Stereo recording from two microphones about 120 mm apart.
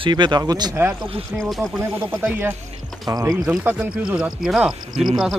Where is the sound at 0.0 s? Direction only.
40° right (ahead or behind).